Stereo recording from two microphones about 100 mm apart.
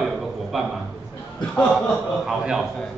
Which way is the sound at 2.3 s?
5° right (ahead or behind).